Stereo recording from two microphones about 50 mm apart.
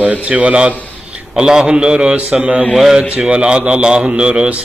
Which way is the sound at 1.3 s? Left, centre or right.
Centre.